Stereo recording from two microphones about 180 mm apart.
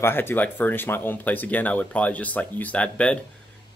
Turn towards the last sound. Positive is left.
turn(degrees=5)  # may be behind; listen again after turning